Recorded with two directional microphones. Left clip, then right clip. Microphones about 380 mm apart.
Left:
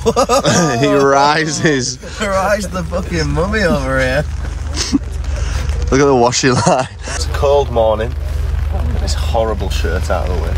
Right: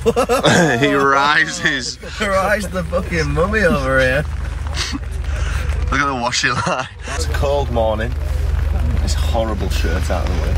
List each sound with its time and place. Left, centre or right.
0.0 s speech: centre; by 2.2 s left
2.2 s speech: centre
5.9 s speech: centre
7.3 s speech: centre
9.1 s speech: centre